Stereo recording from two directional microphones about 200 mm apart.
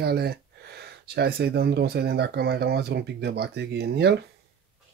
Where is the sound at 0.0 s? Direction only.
50° right (ahead or behind).